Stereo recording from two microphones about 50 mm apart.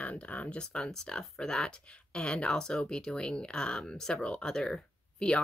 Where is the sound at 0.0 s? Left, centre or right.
Left.